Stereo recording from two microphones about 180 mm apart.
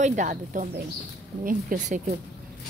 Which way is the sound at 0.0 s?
45° right (ahead or behind).